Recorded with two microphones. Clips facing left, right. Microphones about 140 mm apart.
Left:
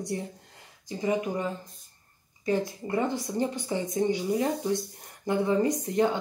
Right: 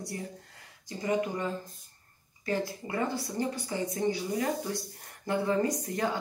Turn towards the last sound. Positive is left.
turn(degrees=20)  # may be behind; listen again after turning